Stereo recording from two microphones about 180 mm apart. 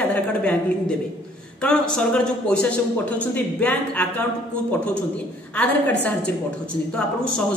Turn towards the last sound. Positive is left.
turn(degrees=5)  # may be behind; listen again after turning